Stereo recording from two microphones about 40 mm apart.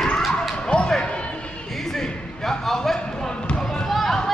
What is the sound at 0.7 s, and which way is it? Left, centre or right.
Basketball bounce, left.